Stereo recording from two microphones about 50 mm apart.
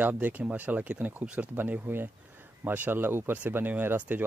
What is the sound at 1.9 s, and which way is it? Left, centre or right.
Speech, right.